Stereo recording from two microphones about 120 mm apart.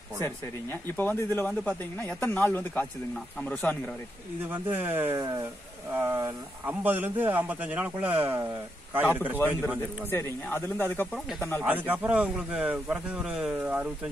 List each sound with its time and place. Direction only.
0.2 s speech: 15° left (ahead or behind)
4.4 s speech: 15° right (ahead or behind)
5.1 s speech: 30° right (ahead or behind)
5.4 s speech: 20° right (ahead or behind)
6.6 s speech: 15° right (ahead or behind)
10.0 s speech: 20° left (ahead or behind)
11.1 s speech: centre (ahead or behind)
11.6 s speech: 15° right (ahead or behind)